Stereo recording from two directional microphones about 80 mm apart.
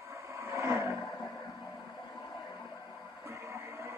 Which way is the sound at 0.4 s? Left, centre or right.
Right.